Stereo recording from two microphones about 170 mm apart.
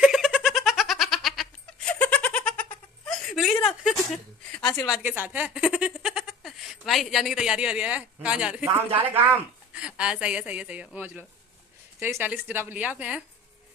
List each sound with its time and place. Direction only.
0.0 s goat: centre (ahead or behind)
3.1 s a sound: centre (ahead or behind)
4.8 s a woman's voice: 5° right (ahead or behind)